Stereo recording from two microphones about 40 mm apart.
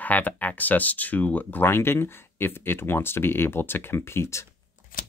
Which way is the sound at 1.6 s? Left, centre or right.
Left.